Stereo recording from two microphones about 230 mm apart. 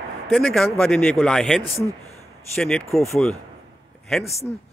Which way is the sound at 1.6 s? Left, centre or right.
Left.